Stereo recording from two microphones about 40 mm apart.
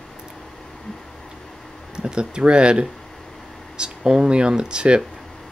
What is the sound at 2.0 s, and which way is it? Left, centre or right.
Speech, right.